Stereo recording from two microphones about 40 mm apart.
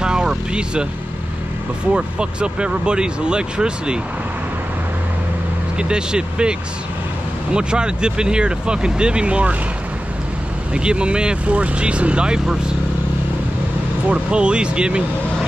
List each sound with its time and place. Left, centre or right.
0.0 s vehicle: right
2.0 s speech: right
5.8 s speech: right
7.5 s speech: right
10.7 s speech: right
14.0 s speech: right